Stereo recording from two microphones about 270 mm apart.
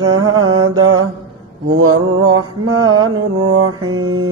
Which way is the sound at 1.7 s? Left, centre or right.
Right.